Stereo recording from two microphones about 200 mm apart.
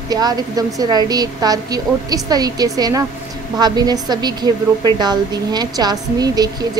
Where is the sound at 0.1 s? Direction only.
20° right (ahead or behind).